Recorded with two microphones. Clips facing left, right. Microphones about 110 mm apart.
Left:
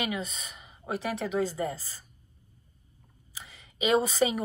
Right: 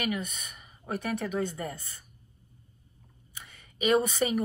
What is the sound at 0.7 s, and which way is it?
A woman's voice, 30° left (ahead or behind).